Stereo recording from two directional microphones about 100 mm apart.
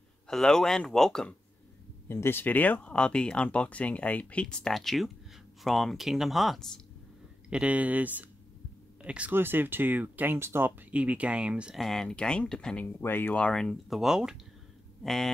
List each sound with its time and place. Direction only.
0.3 s speech: 5° left (ahead or behind)
2.0 s speech: 25° left (ahead or behind); by 6.7 s centre (ahead or behind)
7.4 s speech: 10° right (ahead or behind)
11.8 s speech: 5° left (ahead or behind)
12.8 s speech: 20° left (ahead or behind); by 15.3 s 5° left (ahead or behind)